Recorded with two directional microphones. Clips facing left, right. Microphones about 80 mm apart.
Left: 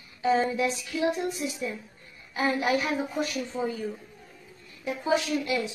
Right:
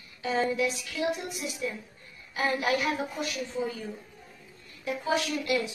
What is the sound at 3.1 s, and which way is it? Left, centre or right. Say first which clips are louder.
Speech: left 3 dB; left.